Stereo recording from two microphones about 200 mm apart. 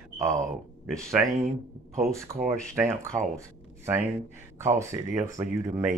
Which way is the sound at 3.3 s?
15° right (ahead or behind).